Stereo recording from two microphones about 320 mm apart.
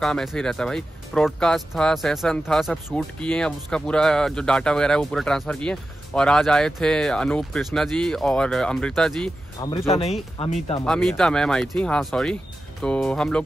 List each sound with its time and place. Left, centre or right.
0.0 s speech: centre
9.6 s speech: centre
10.8 s speech: centre